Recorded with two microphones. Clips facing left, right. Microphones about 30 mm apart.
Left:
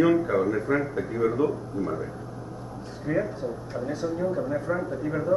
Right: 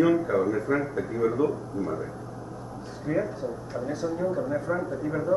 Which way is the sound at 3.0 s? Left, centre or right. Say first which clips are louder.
Left 1 dB; centre.